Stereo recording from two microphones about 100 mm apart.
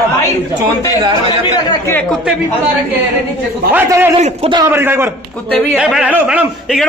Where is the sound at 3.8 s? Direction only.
30° right (ahead or behind).